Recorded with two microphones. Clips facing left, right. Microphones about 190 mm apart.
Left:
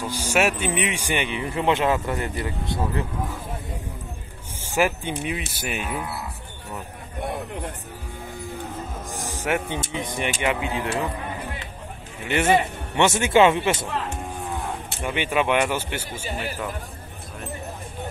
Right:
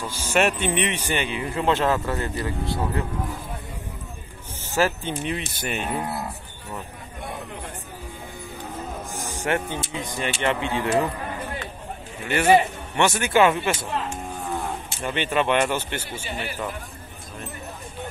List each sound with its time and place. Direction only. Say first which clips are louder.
0.0 s a man's voice: even; 15° left (ahead or behind)
4.6 s a man's voice: even; 15° left (ahead or behind)
5.8 s speech: right 3 dB; 40° right (ahead or behind)
9.2 s music: even; centre (ahead or behind)
9.9 s a man's voice: left 1 dB; 20° left (ahead or behind)
10.4 s speech: right 3 dB; 5° left (ahead or behind)
12.3 s a man's voice: right 2 dB; 20° left (ahead or behind)
15.0 s a man's voice: even; 10° left (ahead or behind)